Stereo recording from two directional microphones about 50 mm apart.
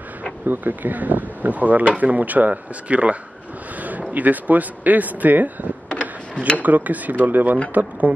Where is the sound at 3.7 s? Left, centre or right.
Right.